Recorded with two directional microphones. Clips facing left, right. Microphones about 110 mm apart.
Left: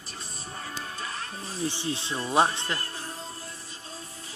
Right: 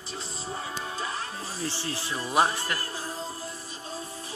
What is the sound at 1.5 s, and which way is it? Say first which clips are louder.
Speech: left 4 dB; 20° left (ahead or behind).